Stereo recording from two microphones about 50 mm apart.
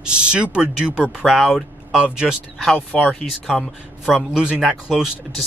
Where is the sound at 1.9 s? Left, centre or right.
Centre.